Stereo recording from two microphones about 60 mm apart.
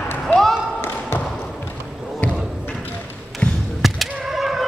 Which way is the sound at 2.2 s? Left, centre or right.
Left.